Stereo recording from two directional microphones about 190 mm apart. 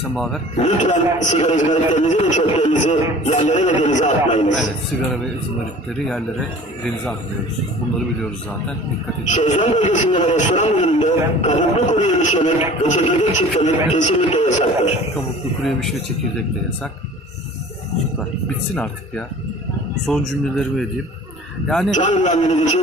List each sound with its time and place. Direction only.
0.1 s speech: centre (ahead or behind)
0.6 s a man's voice: 40° left (ahead or behind)
5.9 s speech: centre (ahead or behind)
9.3 s a man's voice: 40° left (ahead or behind)
20.1 s speech: 5° left (ahead or behind)
21.9 s a man's voice: 40° left (ahead or behind)